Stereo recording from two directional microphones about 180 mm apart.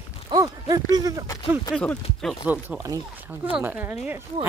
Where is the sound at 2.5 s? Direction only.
15° right (ahead or behind).